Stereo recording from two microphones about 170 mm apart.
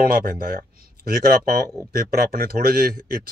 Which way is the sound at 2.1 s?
60° right (ahead or behind).